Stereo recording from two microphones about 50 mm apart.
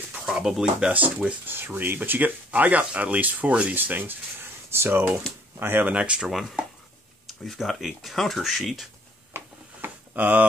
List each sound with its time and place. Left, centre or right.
0.2 s speech: centre
1.4 s speech: right
5.9 s speech: right
6.2 s speech: centre
7.2 s speech: centre
9.3 s a sound: right
10.1 s speech: right